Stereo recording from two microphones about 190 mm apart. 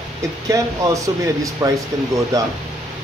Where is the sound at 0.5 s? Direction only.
15° right (ahead or behind).